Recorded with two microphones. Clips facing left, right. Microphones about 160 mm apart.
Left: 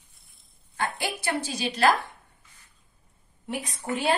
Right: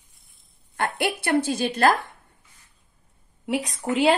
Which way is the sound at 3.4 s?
90° right.